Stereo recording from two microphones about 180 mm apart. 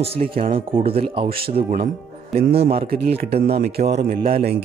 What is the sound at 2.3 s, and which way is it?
Speech, 60° right (ahead or behind).